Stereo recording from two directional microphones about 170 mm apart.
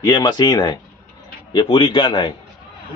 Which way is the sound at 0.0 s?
25° left (ahead or behind).